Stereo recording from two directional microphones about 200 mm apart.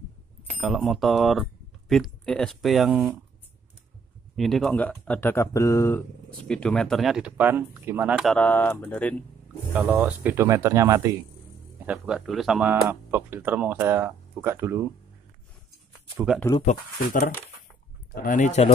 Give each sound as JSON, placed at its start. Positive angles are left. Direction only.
{"t": 0.6, "sound": "speech", "side_deg": 0}
{"t": 4.4, "sound": "speech", "side_deg": 0}
{"t": 9.8, "sound": "speech", "side_deg": -10}
{"t": 11.8, "sound": "speech", "side_deg": -5}
{"t": 16.6, "sound": "speech", "side_deg": 40}